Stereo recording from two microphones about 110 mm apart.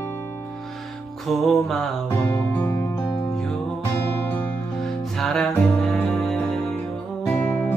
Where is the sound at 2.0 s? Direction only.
15° left (ahead or behind).